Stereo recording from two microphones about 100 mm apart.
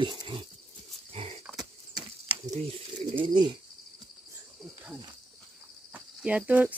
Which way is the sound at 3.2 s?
50° right (ahead or behind).